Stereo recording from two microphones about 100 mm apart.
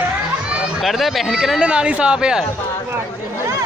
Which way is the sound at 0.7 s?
Centre (ahead or behind).